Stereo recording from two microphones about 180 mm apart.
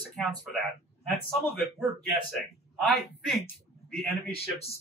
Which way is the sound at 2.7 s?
Centre (ahead or behind).